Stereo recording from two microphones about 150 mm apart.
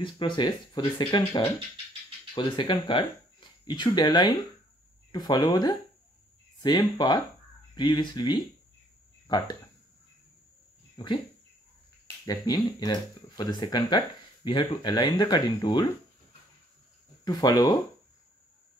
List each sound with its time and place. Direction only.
0.0 s speech: 30° left (ahead or behind)
11.0 s speech: 30° left (ahead or behind)
12.3 s speech: 25° left (ahead or behind)
17.2 s speech: 25° left (ahead or behind)